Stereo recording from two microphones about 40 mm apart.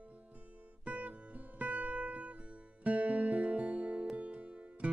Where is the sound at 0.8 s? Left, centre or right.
Right.